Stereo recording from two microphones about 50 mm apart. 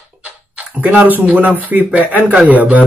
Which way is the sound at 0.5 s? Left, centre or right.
Right.